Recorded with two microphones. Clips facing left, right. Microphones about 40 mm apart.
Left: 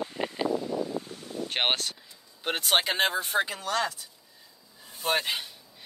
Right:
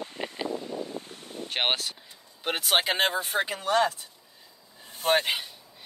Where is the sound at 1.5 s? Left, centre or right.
Centre.